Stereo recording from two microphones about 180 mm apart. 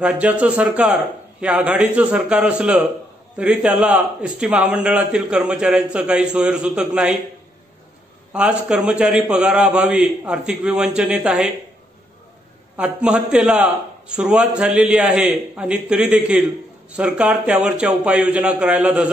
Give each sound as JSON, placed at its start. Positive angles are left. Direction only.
{"t": 0.0, "sound": "a man's voice", "side_deg": -5}
{"t": 8.3, "sound": "a man's voice", "side_deg": -5}
{"t": 12.7, "sound": "a man's voice", "side_deg": -5}